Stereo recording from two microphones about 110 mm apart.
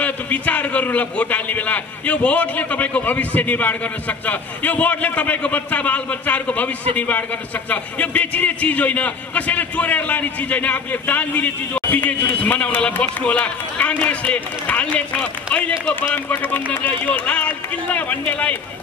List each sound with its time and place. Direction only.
0.0 s a man's voice: 15° left (ahead or behind)